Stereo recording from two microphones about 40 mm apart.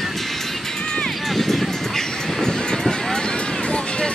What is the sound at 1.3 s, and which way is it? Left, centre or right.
Vehicle, centre.